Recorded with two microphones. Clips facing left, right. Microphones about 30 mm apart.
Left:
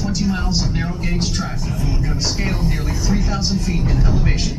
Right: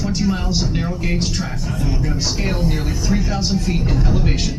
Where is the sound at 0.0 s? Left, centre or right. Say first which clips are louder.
Right 1 dB; centre.